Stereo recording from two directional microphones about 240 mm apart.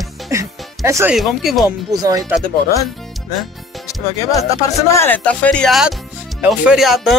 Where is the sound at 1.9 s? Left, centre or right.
Centre.